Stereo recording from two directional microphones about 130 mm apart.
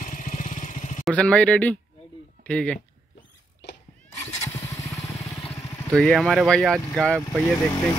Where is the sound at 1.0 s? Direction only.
5° left (ahead or behind).